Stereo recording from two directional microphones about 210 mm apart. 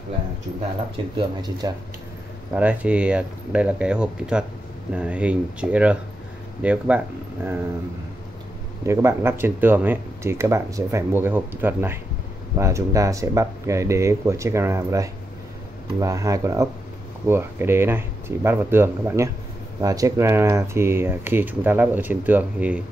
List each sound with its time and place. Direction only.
1.6 s speech: 15° right (ahead or behind)
2.5 s speech: 5° right (ahead or behind)
8.8 s speech: 15° right (ahead or behind)